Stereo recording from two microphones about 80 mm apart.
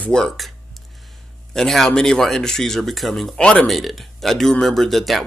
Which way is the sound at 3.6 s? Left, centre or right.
Centre.